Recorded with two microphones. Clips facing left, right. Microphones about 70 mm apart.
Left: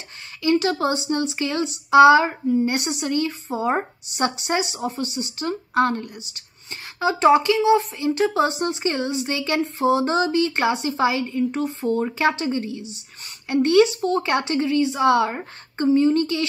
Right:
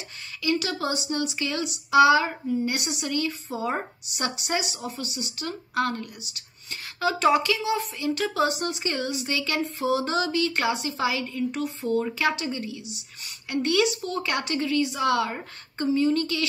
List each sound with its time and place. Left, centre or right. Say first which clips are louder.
0.4 s speech: left 7 dB; left